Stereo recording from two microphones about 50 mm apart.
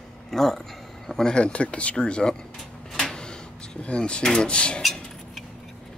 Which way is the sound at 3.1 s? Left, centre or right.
Centre.